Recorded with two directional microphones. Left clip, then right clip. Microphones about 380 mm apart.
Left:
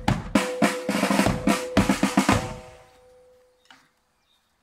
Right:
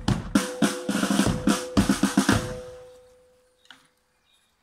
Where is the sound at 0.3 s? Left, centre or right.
Centre.